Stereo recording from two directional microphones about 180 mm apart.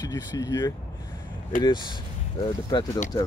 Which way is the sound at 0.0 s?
20° left (ahead or behind).